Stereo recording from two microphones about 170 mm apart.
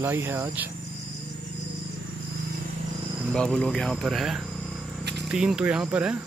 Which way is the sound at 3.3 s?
5° left (ahead or behind).